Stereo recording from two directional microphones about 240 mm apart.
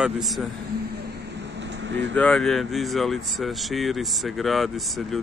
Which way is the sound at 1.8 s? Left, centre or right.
Right.